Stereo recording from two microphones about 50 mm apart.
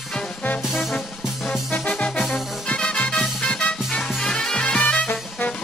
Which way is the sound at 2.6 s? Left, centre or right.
Left.